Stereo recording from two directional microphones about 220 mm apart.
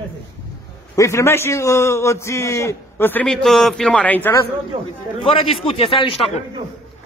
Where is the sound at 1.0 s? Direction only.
15° left (ahead or behind).